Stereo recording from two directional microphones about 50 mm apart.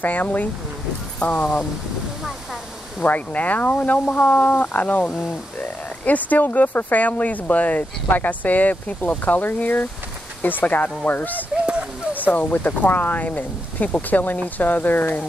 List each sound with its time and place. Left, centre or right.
0.0 s speech: left
3.0 s speech: left